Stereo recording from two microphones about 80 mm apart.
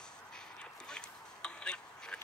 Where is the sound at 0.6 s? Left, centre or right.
Centre.